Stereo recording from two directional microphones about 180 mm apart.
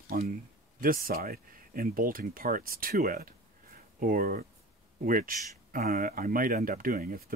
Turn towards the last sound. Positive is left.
turn(degrees=-50)  # may be behind; listen again after turning